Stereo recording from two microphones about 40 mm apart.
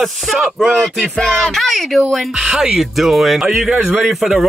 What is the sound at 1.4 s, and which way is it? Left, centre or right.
Speech, centre.